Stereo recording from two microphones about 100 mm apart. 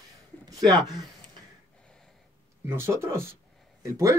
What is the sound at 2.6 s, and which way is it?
Speech, 25° right (ahead or behind).